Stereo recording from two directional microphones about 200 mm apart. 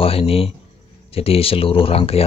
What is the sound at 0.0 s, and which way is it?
Speech, 30° left (ahead or behind).